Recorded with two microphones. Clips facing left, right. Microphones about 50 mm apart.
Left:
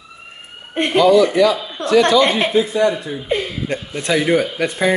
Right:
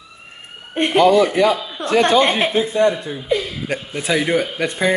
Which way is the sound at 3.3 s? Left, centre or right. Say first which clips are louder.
Right 1 dB; left.